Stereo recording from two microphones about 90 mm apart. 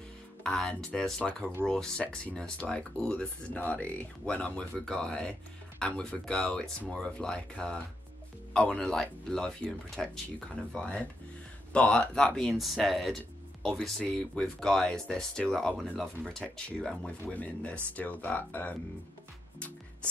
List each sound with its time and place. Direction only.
0.4 s speech: 5° left (ahead or behind); by 18.8 s 20° left (ahead or behind)